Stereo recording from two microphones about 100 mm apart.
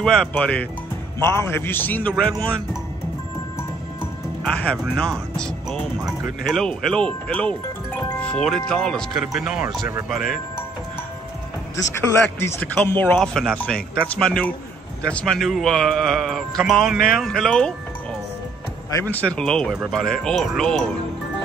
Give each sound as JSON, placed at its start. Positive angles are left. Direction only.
{"t": 0.0, "sound": "speech", "side_deg": 10}
{"t": 1.2, "sound": "a man's voice", "side_deg": 25}
{"t": 4.5, "sound": "speech", "side_deg": 10}
{"t": 8.2, "sound": "music", "side_deg": 10}
{"t": 8.5, "sound": "speech", "side_deg": 5}
{"t": 9.2, "sound": "speech", "side_deg": -10}
{"t": 11.7, "sound": "a man's voice", "side_deg": 30}
{"t": 13.2, "sound": "speech", "side_deg": 5}
{"t": 19.0, "sound": "speech", "side_deg": 10}